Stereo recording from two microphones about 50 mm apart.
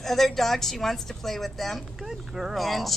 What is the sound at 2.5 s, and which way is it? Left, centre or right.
Speech, centre.